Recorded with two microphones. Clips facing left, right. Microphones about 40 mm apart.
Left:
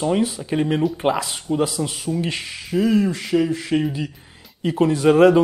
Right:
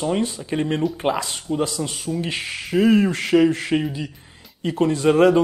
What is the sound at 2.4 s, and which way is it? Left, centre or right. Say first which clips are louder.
Speech: right 5 dB; right.